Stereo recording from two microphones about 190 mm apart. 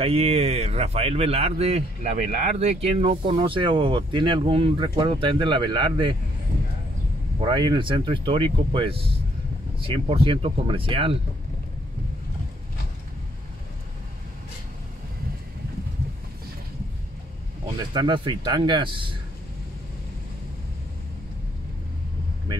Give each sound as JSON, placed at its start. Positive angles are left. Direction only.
{"t": 0.0, "sound": "a man's voice", "side_deg": -30}
{"t": 7.3, "sound": "a man's voice", "side_deg": -25}
{"t": 17.7, "sound": "a man's voice", "side_deg": -25}